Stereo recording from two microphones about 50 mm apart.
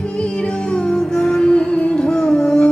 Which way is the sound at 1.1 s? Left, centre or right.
Centre.